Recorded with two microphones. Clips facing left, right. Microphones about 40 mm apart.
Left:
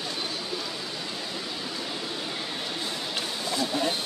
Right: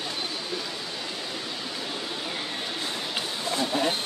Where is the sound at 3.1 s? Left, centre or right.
Right.